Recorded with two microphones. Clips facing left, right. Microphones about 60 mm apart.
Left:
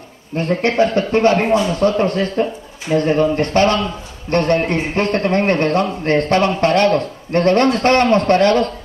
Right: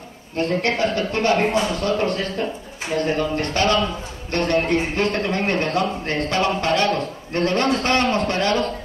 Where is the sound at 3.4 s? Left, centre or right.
Left.